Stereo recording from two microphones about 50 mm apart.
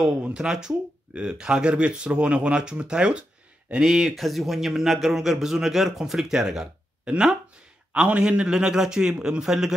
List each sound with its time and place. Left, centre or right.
0.0 s a man's voice: centre
4.1 s a man's voice: centre
7.9 s a man's voice: centre